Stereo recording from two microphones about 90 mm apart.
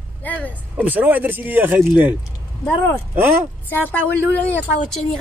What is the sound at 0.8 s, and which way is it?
Speech, 20° right (ahead or behind).